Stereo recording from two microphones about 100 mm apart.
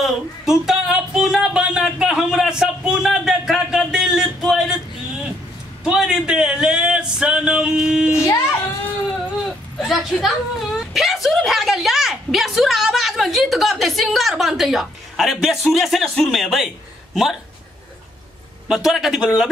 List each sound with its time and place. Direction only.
0.0 s music: 5° right (ahead or behind)
5.9 s a sound: 10° right (ahead or behind)
8.3 s child singing: 25° left (ahead or behind)
9.5 s a sound: centre (ahead or behind)
15.7 s a man's voice: centre (ahead or behind)
18.7 s a man's voice: 5° right (ahead or behind)